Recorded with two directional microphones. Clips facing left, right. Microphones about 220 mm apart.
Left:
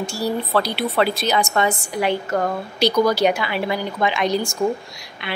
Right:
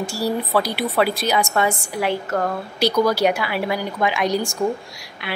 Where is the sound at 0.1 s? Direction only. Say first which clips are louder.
Even; 10° right (ahead or behind).